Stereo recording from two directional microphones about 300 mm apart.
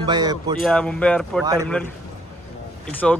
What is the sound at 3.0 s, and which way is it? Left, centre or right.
Speech, centre.